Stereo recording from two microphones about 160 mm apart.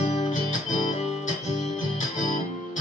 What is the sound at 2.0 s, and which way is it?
Music, 55° left (ahead or behind).